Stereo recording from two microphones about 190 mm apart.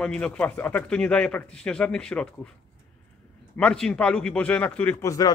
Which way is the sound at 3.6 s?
5° left (ahead or behind).